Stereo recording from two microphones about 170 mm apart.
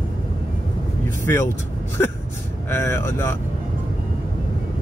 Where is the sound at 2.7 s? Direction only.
15° left (ahead or behind).